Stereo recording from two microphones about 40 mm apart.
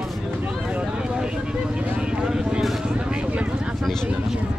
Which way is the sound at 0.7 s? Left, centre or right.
Right.